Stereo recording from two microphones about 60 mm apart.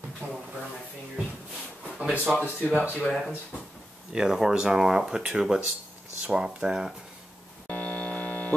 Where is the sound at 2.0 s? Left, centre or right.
Centre.